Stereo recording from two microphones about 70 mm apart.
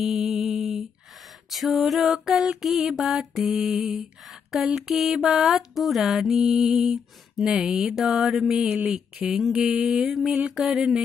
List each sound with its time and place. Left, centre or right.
0.0 s a sound: centre
1.5 s mantra: centre
8.7 s speech: centre
10.5 s mantra: centre